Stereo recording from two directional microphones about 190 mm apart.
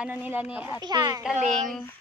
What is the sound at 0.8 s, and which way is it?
Speech, 20° right (ahead or behind).